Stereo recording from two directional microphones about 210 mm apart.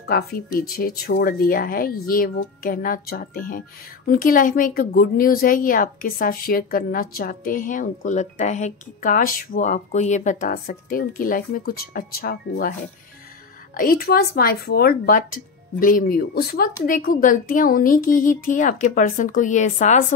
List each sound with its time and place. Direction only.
0.1 s speech: 45° left (ahead or behind)
13.7 s speech: 45° left (ahead or behind)